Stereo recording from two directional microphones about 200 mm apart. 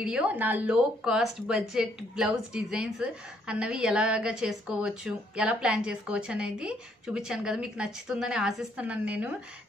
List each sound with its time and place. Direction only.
0.0 s a woman's voice: 5° right (ahead or behind)